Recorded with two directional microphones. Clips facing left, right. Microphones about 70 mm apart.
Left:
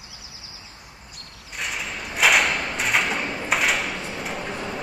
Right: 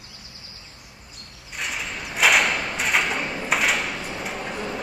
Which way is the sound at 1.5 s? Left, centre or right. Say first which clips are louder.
Even; centre.